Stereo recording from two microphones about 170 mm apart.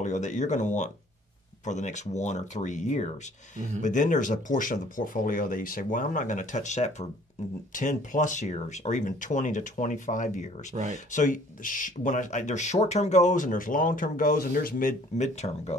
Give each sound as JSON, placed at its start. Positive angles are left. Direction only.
{"t": 0.0, "sound": "speech", "side_deg": 45}
{"t": 10.7, "sound": "speech", "side_deg": -40}
{"t": 11.1, "sound": "speech", "side_deg": 45}